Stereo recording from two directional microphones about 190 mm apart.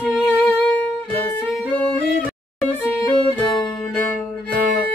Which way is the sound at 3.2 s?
Centre (ahead or behind).